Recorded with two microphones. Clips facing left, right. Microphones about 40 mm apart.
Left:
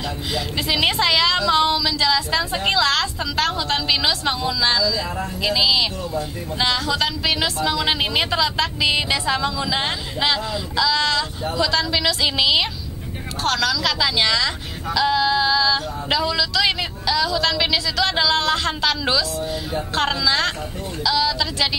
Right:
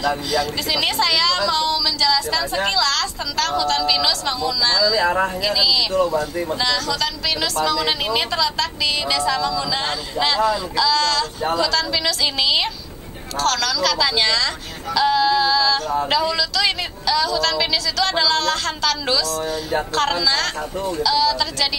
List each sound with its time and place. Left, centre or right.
0.0 s speech: left
4.8 s speech: right
5.4 s speech: left; by 16.3 s centre
16.3 s speech: centre